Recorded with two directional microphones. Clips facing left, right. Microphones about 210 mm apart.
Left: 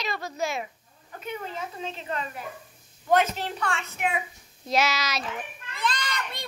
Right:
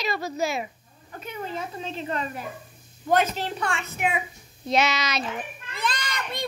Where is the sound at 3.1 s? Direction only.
30° right (ahead or behind).